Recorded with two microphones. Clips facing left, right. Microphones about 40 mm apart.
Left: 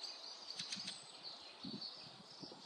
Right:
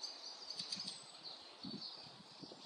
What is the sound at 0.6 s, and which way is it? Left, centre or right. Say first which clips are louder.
Bird flight: left 1 dB; left.